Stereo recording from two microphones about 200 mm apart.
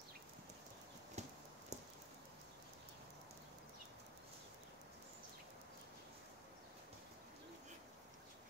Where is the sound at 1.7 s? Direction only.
35° right (ahead or behind).